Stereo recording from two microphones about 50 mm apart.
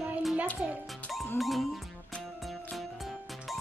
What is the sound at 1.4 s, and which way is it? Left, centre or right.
Music, centre.